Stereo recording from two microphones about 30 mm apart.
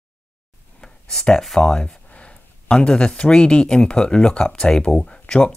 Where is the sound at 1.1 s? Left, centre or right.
Left.